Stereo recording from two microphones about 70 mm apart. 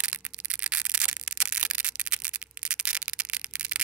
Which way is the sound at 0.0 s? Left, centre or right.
Centre.